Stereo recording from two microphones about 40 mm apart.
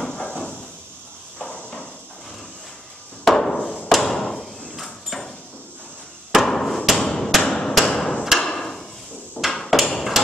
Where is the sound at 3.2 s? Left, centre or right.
Centre.